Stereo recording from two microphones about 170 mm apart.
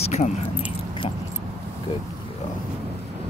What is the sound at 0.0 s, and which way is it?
Keys jangling, 40° left (ahead or behind).